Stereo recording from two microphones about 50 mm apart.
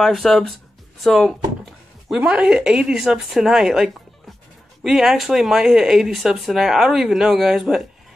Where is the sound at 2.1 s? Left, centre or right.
Right; by 8.2 s centre.